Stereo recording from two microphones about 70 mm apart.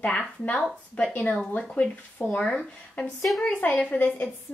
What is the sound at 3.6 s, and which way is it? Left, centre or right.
Speech, left.